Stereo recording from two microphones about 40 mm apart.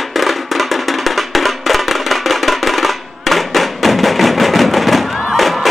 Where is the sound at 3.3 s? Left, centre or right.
Centre.